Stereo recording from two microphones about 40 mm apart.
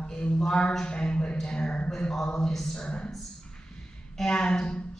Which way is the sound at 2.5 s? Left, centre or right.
Centre.